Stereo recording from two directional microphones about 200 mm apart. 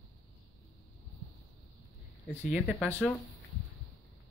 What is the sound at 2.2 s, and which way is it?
Speech, 5° right (ahead or behind).